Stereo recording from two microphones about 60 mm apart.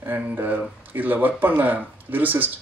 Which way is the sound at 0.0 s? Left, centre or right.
Right.